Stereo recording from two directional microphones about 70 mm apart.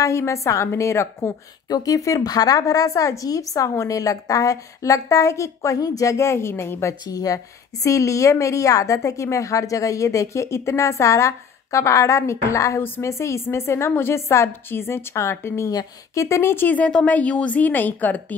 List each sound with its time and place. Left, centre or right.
0.0 s speech: left
1.7 s a woman's voice: left